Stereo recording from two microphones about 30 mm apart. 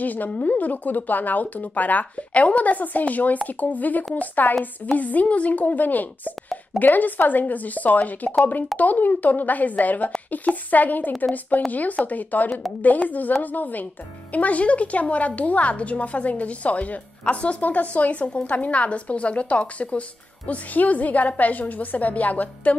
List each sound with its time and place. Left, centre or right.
0.0 s speech: left
4.9 s speech: left
11.5 s speech: left
12.1 s speech: left
14.3 s a woman's voice: left
17.2 s speech: left
17.6 s a woman's voice: left
20.7 s speech: left
21.7 s speech: left